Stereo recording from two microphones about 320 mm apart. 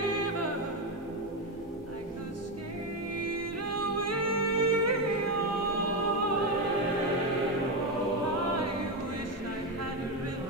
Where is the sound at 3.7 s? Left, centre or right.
Right.